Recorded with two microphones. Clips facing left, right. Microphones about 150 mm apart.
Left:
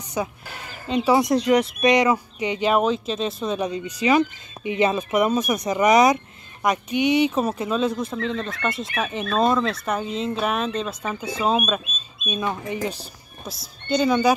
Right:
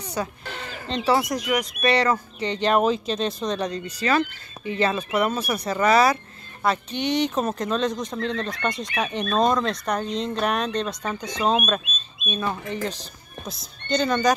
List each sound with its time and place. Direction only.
0.1 s speech: 10° left (ahead or behind)
1.2 s speech: 30° left (ahead or behind)
1.8 s speech: 15° left (ahead or behind)